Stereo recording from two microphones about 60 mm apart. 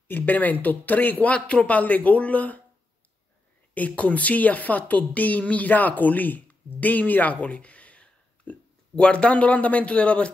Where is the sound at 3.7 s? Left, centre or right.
Left.